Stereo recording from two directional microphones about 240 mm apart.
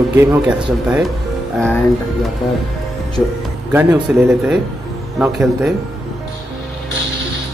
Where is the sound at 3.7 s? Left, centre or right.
Centre.